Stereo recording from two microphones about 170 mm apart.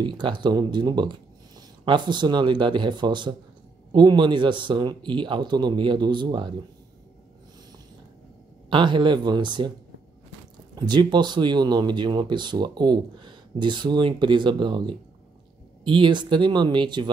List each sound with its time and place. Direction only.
0.0 s speech: 25° right (ahead or behind)
8.6 s speech: 30° right (ahead or behind)
10.9 s speech: 25° right (ahead or behind)